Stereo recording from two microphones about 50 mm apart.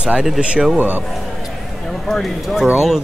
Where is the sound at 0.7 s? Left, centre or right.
Right.